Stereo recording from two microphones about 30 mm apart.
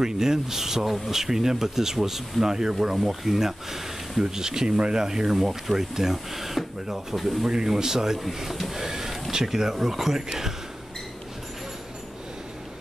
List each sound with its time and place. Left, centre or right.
0.0 s speech: centre
3.0 s speech: centre; by 5.0 s right
5.0 s speech: centre
7.4 s speech: centre
8.7 s a sound: centre
9.3 s speech: centre